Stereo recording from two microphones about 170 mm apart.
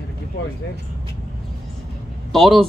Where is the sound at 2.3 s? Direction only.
Centre (ahead or behind).